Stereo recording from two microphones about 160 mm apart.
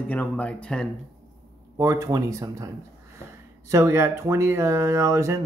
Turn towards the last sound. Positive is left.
turn(degrees=-20)  # may be behind; listen again after turning